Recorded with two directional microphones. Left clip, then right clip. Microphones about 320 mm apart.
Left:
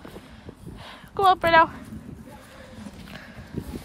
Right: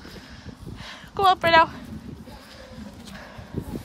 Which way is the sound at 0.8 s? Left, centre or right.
Centre.